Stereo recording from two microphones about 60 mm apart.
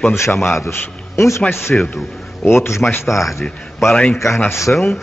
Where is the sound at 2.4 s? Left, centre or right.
Left.